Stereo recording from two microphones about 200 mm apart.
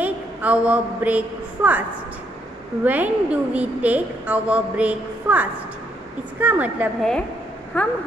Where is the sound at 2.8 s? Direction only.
10° right (ahead or behind).